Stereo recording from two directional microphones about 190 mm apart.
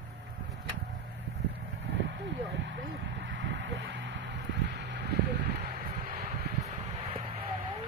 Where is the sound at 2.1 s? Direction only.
75° right (ahead or behind).